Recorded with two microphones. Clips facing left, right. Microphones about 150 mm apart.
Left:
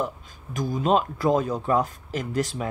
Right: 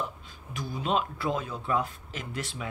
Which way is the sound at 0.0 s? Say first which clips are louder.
Left 7 dB; 45° left (ahead or behind).